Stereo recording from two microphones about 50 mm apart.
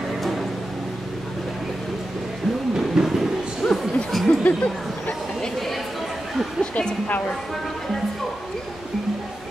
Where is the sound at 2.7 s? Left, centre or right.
Centre.